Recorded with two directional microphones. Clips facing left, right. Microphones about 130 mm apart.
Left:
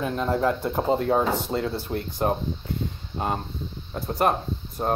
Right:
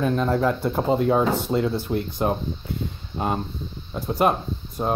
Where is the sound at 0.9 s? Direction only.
30° left (ahead or behind).